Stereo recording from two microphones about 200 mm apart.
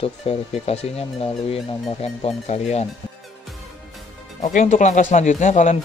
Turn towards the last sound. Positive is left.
turn(degrees=40)  # may be behind; listen again after turning